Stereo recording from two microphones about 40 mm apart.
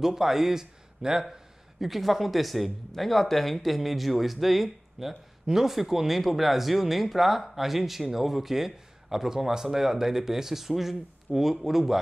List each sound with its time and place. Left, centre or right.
0.0 s a man's voice: centre
1.3 s speech: centre